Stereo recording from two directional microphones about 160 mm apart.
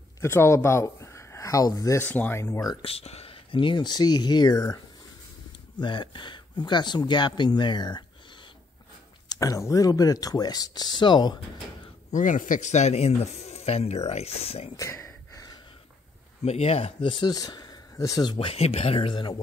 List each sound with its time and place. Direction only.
0.2 s speech: 15° left (ahead or behind)
2.8 s speech: 40° left (ahead or behind)
5.8 s speech: 30° left (ahead or behind)
9.3 s speech: 20° left (ahead or behind)
12.1 s speech: 55° left (ahead or behind)
14.8 s a sound: 15° left (ahead or behind)
16.4 s speech: 40° left (ahead or behind); by 18.3 s 20° left (ahead or behind)
18.3 s speech: 35° left (ahead or behind)